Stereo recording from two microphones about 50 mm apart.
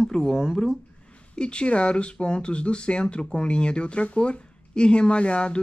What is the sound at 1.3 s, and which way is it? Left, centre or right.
Speech, centre.